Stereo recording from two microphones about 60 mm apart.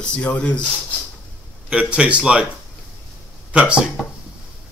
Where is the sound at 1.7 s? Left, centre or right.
Right.